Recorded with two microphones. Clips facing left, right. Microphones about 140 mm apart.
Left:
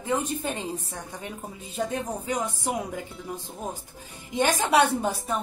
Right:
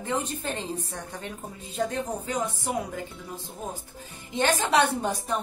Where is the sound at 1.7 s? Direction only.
10° left (ahead or behind).